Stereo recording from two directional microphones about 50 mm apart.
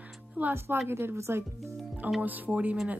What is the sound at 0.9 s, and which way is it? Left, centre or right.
Speech, right.